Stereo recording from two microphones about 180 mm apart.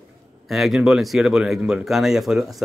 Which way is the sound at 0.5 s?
Centre (ahead or behind).